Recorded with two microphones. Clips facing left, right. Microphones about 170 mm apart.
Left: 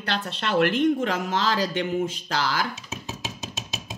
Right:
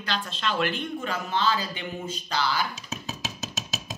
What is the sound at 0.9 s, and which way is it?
Speech, 90° left.